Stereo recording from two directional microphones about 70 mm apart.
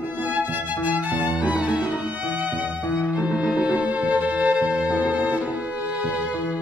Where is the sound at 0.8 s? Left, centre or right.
Right.